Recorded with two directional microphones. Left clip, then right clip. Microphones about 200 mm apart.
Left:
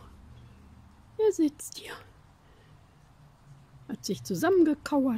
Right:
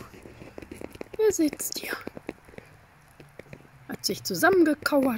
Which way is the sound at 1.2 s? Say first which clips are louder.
Right 2 dB; 15° left (ahead or behind).